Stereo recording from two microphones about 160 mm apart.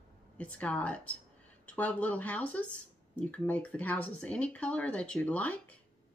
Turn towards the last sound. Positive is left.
turn(degrees=10)  # may be behind; listen again after turning